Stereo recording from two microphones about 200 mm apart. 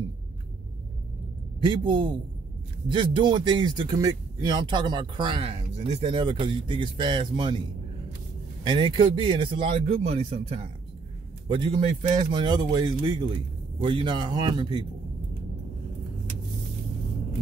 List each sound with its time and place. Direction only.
1.6 s speech: 25° right (ahead or behind)
8.6 s speech: 25° right (ahead or behind)